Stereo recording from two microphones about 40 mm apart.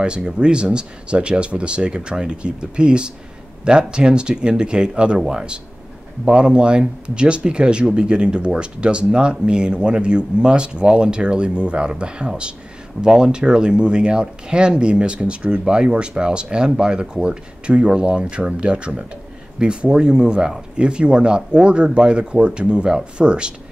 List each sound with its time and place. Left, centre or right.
0.0 s speech: right